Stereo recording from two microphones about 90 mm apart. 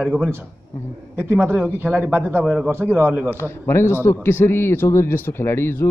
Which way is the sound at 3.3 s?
30° left (ahead or behind).